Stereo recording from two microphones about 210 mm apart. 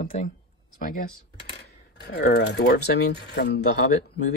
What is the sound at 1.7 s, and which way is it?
Speech, 50° left (ahead or behind).